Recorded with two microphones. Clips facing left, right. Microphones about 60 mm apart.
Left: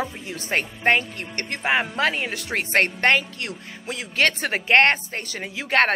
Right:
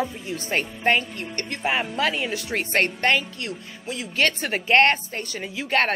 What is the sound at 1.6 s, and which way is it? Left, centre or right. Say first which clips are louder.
Speech: left 2 dB; left.